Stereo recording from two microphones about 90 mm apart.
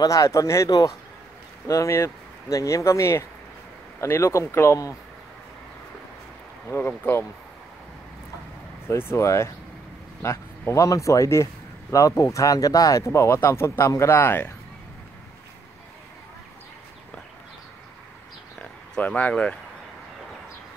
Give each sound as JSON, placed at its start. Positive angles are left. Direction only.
{"t": 0.0, "sound": "speech", "side_deg": 40}
{"t": 6.7, "sound": "speech", "side_deg": 25}
{"t": 8.8, "sound": "speech", "side_deg": 25}
{"t": 18.6, "sound": "a sound", "side_deg": 15}